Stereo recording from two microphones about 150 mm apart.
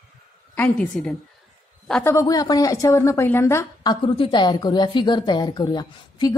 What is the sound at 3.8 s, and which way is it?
A woman's voice, 35° left (ahead or behind).